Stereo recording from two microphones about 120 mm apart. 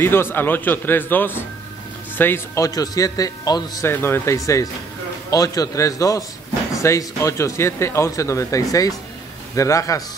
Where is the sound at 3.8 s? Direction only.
20° left (ahead or behind).